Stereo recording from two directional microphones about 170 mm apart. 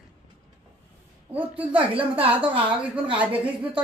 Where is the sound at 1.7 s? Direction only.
30° right (ahead or behind).